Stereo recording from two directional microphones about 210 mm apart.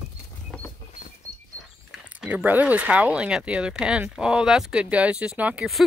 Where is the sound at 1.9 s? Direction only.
5° right (ahead or behind).